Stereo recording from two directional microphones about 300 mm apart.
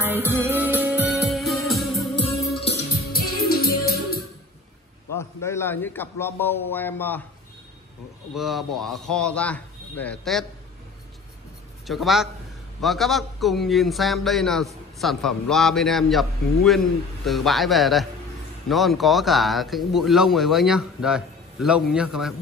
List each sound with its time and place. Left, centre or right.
0.0 s music: centre
2.1 s music: centre
5.1 s a man's voice: centre
8.4 s a man's voice: centre
11.9 s a man's voice: centre